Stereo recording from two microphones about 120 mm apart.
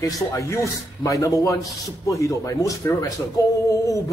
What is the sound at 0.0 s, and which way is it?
A man's voice, 25° left (ahead or behind).